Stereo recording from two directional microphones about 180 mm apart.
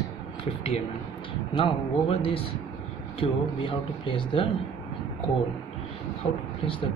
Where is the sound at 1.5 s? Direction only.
30° left (ahead or behind).